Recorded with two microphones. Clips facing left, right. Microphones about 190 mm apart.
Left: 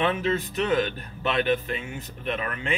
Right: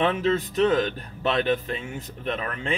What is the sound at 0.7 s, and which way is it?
Speech, 40° right (ahead or behind).